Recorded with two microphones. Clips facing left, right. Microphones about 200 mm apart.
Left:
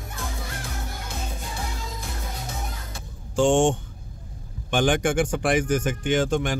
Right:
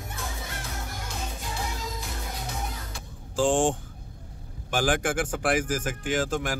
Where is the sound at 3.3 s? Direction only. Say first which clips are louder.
Left 4 dB; 5° right (ahead or behind).